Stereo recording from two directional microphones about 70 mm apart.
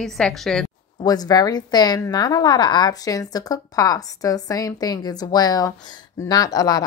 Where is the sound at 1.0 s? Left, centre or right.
Left.